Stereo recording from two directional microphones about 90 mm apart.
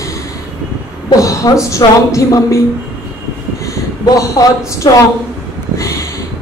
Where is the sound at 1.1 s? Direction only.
40° left (ahead or behind).